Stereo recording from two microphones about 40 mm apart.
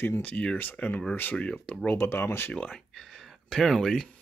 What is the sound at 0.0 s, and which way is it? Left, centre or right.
Speech, left.